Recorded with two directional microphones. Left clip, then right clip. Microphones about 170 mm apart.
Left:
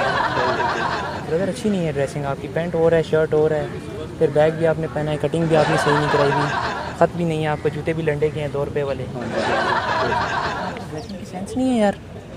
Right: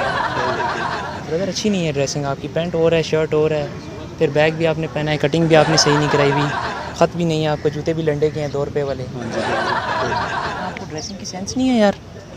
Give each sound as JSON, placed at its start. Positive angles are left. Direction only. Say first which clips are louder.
{"t": 0.0, "sound": "chuckle", "louder": "even", "side_deg": 0}
{"t": 1.9, "sound": "speech", "louder": "right 2 dB", "side_deg": -40}
{"t": 5.6, "sound": "speech", "louder": "even", "side_deg": 0}
{"t": 7.0, "sound": "speech", "louder": "right 2 dB", "side_deg": -45}
{"t": 7.5, "sound": "speech", "louder": "right 2 dB", "side_deg": -25}
{"t": 9.3, "sound": "a sound", "louder": "even", "side_deg": 0}